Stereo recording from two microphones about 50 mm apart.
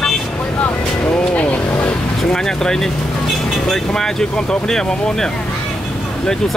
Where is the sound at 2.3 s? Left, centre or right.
Centre.